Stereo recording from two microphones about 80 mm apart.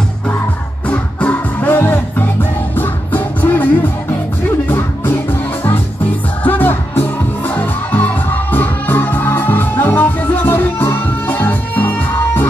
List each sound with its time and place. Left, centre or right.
0.8 s music: centre
4.6 s music: left
6.4 s music: left